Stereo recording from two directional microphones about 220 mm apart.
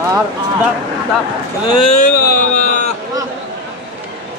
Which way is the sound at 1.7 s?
25° left (ahead or behind).